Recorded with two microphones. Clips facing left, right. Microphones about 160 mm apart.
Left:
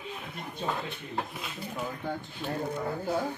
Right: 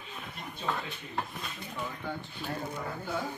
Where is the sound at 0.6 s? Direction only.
40° left (ahead or behind).